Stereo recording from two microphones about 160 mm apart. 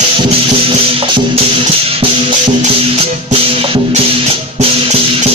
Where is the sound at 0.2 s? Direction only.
35° right (ahead or behind).